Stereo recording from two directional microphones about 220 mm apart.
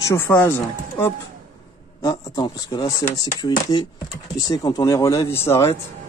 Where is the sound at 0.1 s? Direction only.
10° left (ahead or behind).